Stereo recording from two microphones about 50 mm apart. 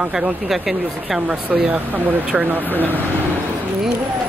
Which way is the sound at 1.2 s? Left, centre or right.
Right.